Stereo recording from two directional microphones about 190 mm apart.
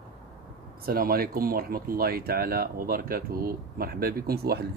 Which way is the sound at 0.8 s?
50° right (ahead or behind).